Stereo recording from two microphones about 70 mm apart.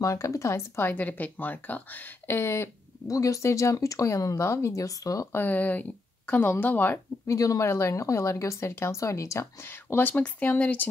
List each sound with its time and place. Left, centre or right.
0.0 s speech: left
0.9 s speech: left
3.1 s speech: left
5.3 s speech: left
7.2 s speech: left
9.7 s speech: left